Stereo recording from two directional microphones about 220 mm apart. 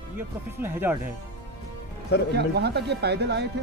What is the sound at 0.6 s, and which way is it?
Speech, 10° right (ahead or behind).